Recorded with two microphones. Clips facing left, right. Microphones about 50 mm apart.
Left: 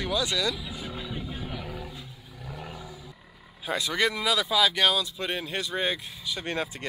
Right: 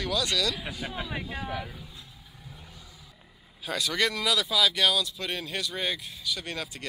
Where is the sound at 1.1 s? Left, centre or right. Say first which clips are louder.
Right 2 dB; right.